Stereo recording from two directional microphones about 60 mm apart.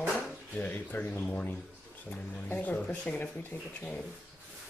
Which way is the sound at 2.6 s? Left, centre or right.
Left.